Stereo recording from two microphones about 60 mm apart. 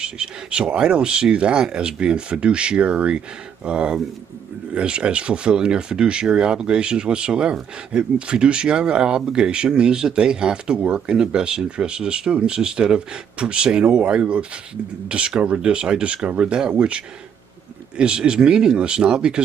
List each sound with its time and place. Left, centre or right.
0.0 s speech: centre